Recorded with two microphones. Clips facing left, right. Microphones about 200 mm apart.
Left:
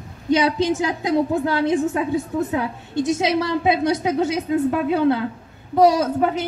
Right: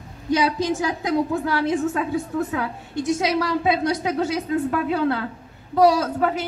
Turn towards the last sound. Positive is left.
turn(degrees=20)  # may be behind; listen again after turning